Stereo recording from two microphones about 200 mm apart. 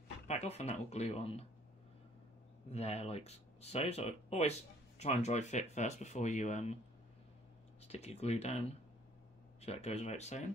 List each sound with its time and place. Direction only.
0.3 s speech: 35° left (ahead or behind)
2.7 s speech: 30° left (ahead or behind)
7.8 s speech: 30° left (ahead or behind)